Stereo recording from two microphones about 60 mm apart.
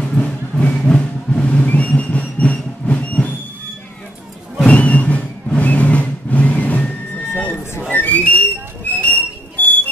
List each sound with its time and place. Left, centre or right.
0.0 s vehicle: left
1.7 s music: left
4.6 s music: left
5.6 s vehicle: left
7.9 s whistle: left